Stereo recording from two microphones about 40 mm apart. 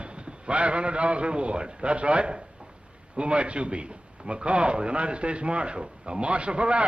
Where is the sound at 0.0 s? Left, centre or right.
Right.